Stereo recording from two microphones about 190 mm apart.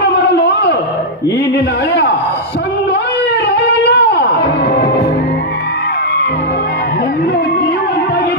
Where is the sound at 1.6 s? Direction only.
60° left (ahead or behind).